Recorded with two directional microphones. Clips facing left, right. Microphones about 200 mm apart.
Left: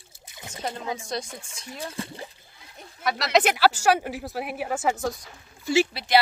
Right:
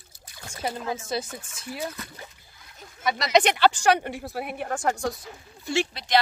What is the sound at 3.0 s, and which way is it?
Speech, centre (ahead or behind).